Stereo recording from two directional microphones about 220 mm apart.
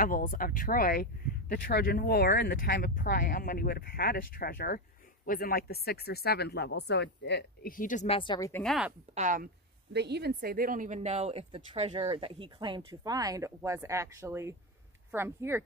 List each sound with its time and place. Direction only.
0.0 s speech: 40° left (ahead or behind)
8.2 s speech: 20° left (ahead or behind)
8.6 s speech: centre (ahead or behind)
9.1 s speech: 35° right (ahead or behind)
9.9 s speech: 50° right (ahead or behind); by 15.6 s 10° right (ahead or behind)